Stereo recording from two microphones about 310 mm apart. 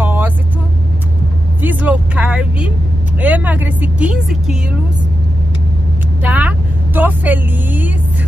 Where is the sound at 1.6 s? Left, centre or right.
Centre.